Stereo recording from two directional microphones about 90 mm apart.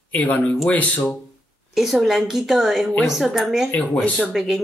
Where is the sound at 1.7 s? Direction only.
5° right (ahead or behind).